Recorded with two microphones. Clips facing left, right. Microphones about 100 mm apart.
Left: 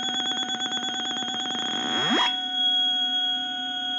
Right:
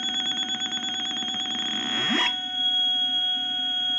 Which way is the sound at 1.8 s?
20° left (ahead or behind).